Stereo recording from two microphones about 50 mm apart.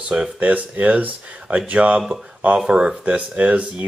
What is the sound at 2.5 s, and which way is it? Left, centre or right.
Speech, centre.